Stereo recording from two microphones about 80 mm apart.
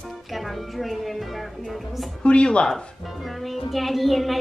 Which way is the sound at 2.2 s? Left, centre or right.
Centre.